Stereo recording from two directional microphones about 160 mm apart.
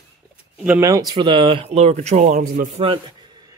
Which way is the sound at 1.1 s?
30° right (ahead or behind).